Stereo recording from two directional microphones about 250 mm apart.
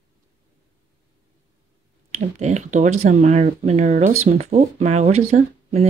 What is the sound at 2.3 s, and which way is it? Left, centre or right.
Speech, right.